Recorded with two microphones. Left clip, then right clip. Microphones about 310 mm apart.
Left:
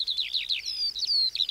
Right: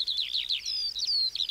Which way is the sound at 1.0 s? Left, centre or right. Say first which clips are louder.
Left 2 dB; left.